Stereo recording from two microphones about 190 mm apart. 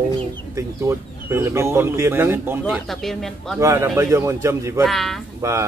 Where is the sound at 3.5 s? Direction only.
15° right (ahead or behind).